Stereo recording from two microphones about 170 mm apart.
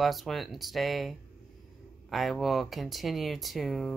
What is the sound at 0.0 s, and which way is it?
Speech, centre (ahead or behind).